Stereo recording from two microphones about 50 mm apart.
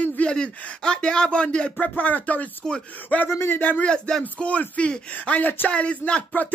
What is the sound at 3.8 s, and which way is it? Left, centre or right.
Speech, centre.